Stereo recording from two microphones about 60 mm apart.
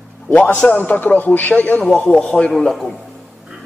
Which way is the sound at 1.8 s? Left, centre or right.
Centre.